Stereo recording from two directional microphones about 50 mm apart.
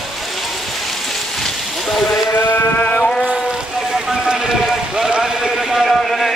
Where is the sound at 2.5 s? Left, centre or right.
Left.